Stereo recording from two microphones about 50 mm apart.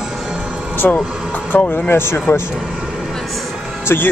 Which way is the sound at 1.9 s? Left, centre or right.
Left.